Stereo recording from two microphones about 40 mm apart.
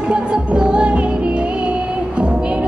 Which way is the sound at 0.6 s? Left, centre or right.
Right.